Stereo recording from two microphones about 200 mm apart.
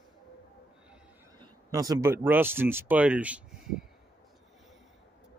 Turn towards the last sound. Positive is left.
turn(degrees=-5)  # may be behind; listen again after turning